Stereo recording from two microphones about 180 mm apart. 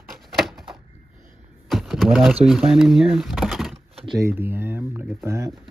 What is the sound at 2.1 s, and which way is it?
Speech, 10° right (ahead or behind).